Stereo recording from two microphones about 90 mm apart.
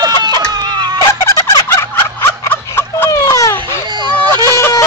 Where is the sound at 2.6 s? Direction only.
30° left (ahead or behind).